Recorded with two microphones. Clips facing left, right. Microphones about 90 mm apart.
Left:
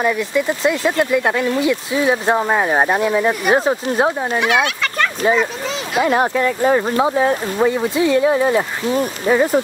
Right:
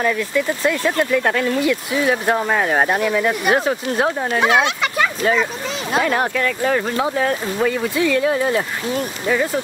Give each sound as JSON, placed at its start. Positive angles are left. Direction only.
{"t": 0.0, "sound": "speech", "side_deg": 20}
{"t": 4.4, "sound": "speech", "side_deg": -30}
{"t": 6.0, "sound": "speech", "side_deg": 25}